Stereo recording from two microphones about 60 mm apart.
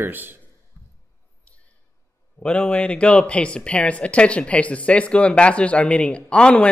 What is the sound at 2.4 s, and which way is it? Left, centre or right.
Speech, centre.